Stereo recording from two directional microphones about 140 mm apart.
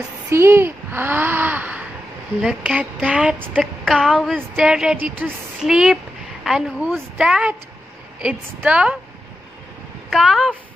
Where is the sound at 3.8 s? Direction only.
5° right (ahead or behind).